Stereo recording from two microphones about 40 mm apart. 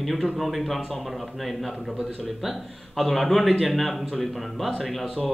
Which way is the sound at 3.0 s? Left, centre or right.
Centre.